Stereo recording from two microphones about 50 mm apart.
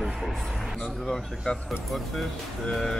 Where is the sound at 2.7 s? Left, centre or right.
Centre.